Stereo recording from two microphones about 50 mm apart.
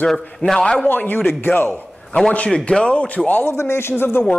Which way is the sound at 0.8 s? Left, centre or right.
Left.